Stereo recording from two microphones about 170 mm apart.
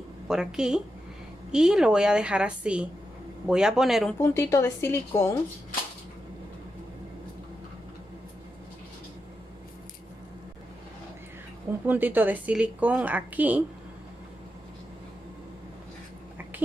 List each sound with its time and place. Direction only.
0.3 s a woman's voice: 5° right (ahead or behind)
4.2 s a woman's voice: 15° left (ahead or behind)
11.8 s a woman's voice: 10° right (ahead or behind)